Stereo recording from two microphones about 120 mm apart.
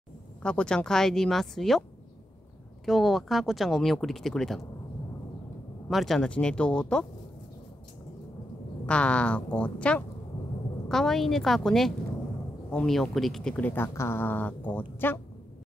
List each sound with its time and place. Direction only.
0.4 s speech: 10° left (ahead or behind)
5.9 s speech: centre (ahead or behind)
8.8 s speech: 10° left (ahead or behind)